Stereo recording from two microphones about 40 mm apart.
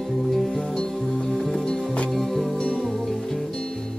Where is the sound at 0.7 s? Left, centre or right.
Centre.